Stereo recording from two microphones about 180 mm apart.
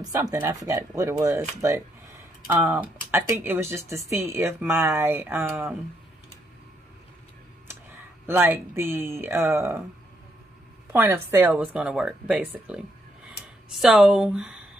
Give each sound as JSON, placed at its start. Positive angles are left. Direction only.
{"t": 0.0, "sound": "speech", "side_deg": -20}
{"t": 8.3, "sound": "speech", "side_deg": -10}
{"t": 10.9, "sound": "speech", "side_deg": -10}